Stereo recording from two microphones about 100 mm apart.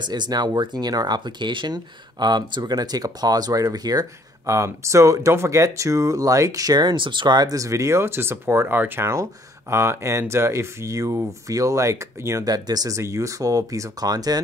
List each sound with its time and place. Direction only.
0.0 s speech: 45° right (ahead or behind)